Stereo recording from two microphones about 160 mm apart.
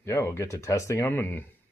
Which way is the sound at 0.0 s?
15° left (ahead or behind).